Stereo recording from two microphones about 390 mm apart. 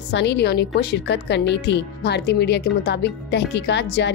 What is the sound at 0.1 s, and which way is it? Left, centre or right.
A woman's voice, left.